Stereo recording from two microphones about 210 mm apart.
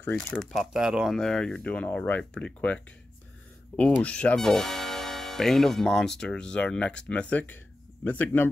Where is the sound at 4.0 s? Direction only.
5° left (ahead or behind).